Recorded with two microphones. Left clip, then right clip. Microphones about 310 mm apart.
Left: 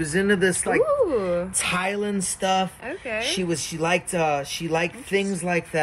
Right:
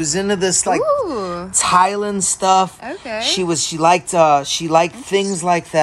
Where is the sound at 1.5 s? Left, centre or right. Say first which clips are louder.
Right 11 dB; right.